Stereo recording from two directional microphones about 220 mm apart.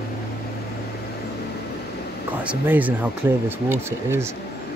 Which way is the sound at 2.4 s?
5° right (ahead or behind).